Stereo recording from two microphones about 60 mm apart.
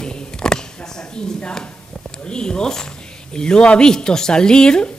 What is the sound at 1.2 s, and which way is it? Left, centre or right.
Speech, centre.